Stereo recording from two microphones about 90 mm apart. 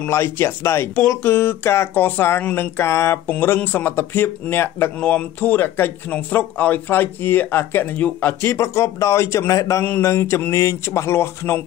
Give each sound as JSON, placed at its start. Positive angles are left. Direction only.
{"t": 0.0, "sound": "speech", "side_deg": 30}
{"t": 8.5, "sound": "speech", "side_deg": 30}